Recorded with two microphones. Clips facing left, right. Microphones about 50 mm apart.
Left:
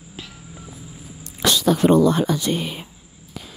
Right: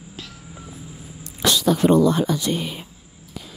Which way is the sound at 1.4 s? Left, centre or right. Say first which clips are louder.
Left 1 dB; left.